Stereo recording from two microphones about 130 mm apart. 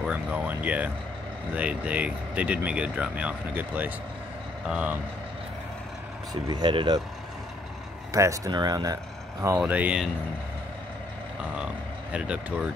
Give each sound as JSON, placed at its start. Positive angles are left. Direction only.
{"t": 0.0, "sound": "speech", "side_deg": -10}
{"t": 6.3, "sound": "speech", "side_deg": -35}
{"t": 8.1, "sound": "speech", "side_deg": -25}
{"t": 9.6, "sound": "speech", "side_deg": -10}
{"t": 11.5, "sound": "speech", "side_deg": -10}